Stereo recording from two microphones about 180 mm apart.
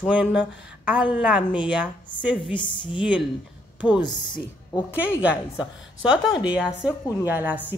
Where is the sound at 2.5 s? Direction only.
25° left (ahead or behind).